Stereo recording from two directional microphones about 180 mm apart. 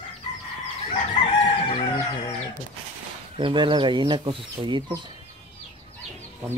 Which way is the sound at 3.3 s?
25° right (ahead or behind).